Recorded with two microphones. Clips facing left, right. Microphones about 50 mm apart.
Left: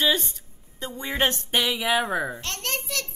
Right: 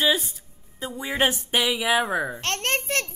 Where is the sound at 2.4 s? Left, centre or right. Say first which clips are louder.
Right 5 dB; right.